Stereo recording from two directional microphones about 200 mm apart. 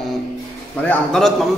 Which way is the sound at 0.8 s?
5° left (ahead or behind).